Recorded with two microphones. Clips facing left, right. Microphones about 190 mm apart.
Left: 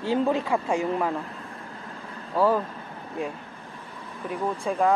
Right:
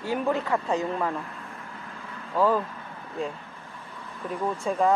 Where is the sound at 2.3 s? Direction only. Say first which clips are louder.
Left 1 dB; 5° left (ahead or behind).